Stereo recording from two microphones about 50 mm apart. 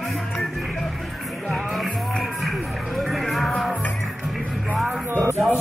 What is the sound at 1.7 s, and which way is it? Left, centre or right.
Music, centre.